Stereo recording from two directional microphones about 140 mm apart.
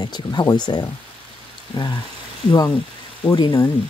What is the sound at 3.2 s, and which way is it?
Speech, 30° left (ahead or behind).